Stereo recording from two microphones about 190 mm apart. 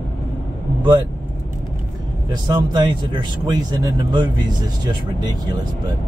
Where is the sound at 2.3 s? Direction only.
20° right (ahead or behind).